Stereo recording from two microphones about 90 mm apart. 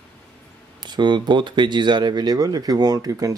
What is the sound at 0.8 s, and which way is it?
Speech, 55° right (ahead or behind).